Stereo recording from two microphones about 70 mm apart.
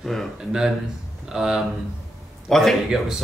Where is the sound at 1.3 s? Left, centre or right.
Centre.